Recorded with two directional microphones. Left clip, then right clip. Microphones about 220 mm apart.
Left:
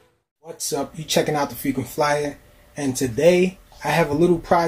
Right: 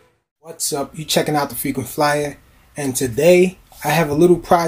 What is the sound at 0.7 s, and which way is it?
Speech, 15° right (ahead or behind).